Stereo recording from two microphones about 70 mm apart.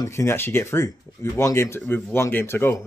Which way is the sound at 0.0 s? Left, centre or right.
Left.